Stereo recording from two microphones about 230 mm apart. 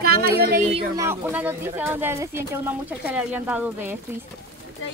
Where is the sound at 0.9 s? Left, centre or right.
Centre.